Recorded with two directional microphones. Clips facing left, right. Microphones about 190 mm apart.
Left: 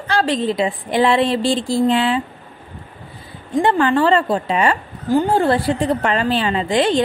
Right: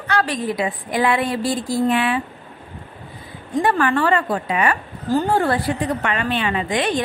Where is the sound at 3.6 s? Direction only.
25° left (ahead or behind).